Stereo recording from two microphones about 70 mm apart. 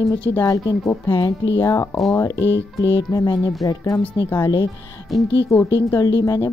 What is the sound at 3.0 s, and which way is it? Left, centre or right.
Speech, left.